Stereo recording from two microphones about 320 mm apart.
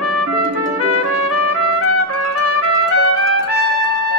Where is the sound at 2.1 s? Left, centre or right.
Left.